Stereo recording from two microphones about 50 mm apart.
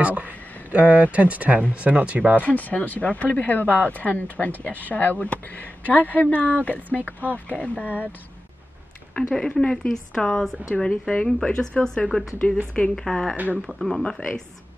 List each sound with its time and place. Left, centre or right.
0.0 s speech: right
2.4 s speech: left
9.1 s speech: centre
12.4 s a woman's voice: left
12.9 s speech: centre
14.0 s speech: centre